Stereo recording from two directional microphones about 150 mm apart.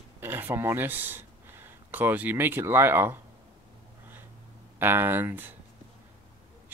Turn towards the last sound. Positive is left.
turn(degrees=-15)  # may be behind; listen again after turning